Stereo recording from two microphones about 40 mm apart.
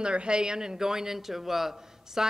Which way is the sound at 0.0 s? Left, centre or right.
Right.